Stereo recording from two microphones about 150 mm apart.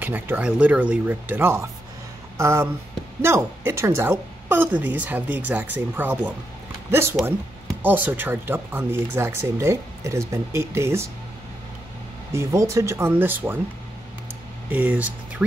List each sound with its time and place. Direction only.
0.0 s speech: 15° right (ahead or behind)
12.3 s speech: 20° right (ahead or behind)
14.7 s speech: 10° right (ahead or behind)